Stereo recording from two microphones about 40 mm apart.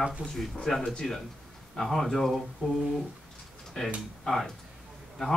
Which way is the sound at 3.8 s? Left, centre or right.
Centre.